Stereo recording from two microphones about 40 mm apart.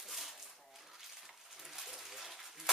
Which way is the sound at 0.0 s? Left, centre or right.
Centre.